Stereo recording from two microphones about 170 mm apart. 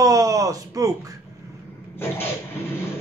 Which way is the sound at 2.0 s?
15° left (ahead or behind).